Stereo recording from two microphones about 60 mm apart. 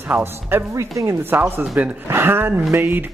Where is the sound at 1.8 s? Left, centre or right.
Right.